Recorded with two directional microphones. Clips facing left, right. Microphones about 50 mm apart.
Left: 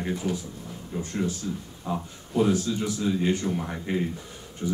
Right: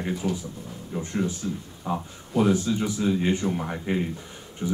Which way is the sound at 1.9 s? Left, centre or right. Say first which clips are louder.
Right 2 dB; right.